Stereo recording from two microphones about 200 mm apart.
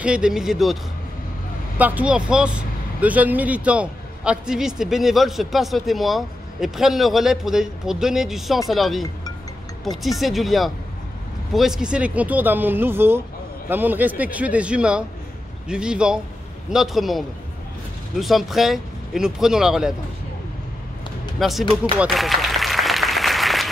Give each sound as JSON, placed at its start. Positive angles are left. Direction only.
{"t": 0.0, "sound": "speech", "side_deg": -5}
{"t": 1.8, "sound": "speech", "side_deg": -10}
{"t": 21.4, "sound": "speech", "side_deg": 0}
{"t": 21.9, "sound": "applause", "side_deg": -5}